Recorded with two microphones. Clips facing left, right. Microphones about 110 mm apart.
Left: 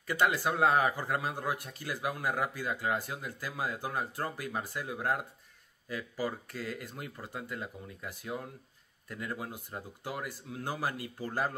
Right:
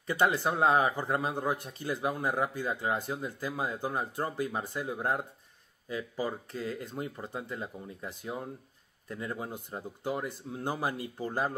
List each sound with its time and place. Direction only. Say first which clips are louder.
0.0 s a man's voice: right 2 dB; 25° right (ahead or behind)